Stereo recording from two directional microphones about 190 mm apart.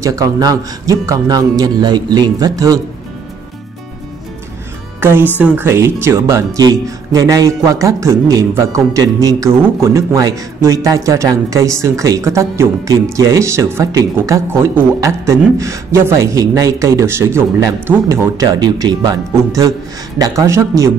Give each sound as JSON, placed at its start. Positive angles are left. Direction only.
{"t": 0.0, "sound": "a man's voice", "side_deg": -15}
{"t": 5.0, "sound": "a man's voice", "side_deg": -10}